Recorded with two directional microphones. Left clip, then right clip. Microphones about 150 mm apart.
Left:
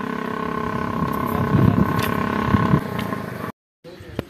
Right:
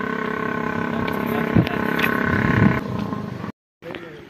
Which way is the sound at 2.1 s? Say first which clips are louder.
Right 1 dB; 60° right (ahead or behind).